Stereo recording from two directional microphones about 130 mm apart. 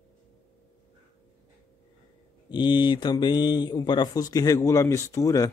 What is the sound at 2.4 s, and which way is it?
Speech, 35° left (ahead or behind).